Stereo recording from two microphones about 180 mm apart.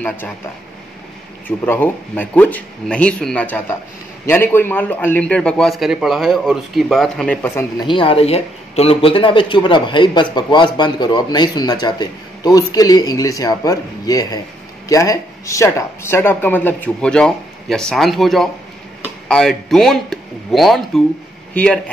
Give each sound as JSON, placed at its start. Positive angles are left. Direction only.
{"t": 1.7, "sound": "speech", "side_deg": 10}
{"t": 7.8, "sound": "speech", "side_deg": 30}